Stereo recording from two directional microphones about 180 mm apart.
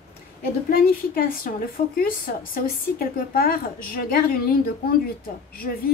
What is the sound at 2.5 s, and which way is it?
A woman's voice, 55° left (ahead or behind).